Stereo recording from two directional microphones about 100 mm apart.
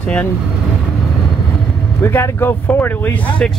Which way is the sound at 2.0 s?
25° left (ahead or behind).